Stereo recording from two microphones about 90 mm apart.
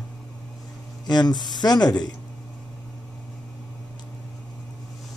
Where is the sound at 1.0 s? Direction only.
50° left (ahead or behind).